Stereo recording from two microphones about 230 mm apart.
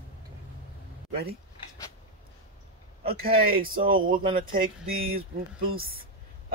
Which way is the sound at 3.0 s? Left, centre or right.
Right.